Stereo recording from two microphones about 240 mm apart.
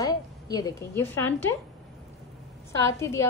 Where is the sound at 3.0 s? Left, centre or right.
Centre.